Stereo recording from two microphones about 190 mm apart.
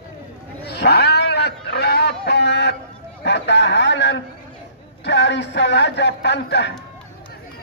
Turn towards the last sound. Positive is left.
turn(degrees=65)  # may be behind; listen again after turning